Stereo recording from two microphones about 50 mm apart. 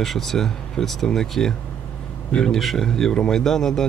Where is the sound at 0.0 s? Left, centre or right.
Centre.